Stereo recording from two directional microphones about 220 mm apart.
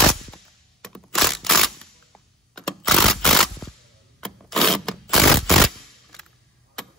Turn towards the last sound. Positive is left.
turn(degrees=0)  # may be behind; listen again after turning